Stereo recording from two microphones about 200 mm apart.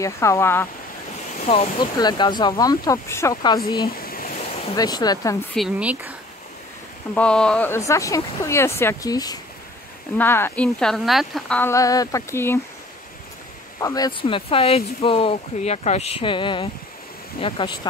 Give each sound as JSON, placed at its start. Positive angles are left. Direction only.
{"t": 0.0, "sound": "speech", "side_deg": 15}
{"t": 1.4, "sound": "speech", "side_deg": 30}
{"t": 3.8, "sound": "a sound", "side_deg": 50}
{"t": 4.7, "sound": "speech", "side_deg": 20}
{"t": 5.5, "sound": "speech", "side_deg": -5}
{"t": 7.2, "sound": "speech", "side_deg": 5}
{"t": 13.7, "sound": "speech", "side_deg": 15}